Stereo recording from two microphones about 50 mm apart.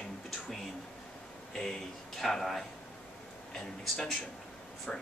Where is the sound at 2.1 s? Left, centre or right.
Centre.